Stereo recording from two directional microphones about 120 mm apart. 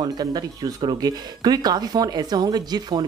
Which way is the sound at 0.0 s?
35° right (ahead or behind).